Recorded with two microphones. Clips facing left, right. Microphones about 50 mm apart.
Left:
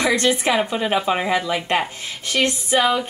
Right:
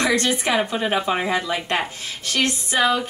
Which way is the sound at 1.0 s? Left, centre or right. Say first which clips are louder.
Left 2 dB; centre.